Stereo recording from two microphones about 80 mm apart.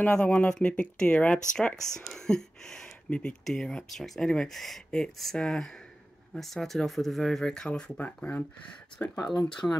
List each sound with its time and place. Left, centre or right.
0.0 s speech: centre
8.0 s speech: left
9.6 s speech: left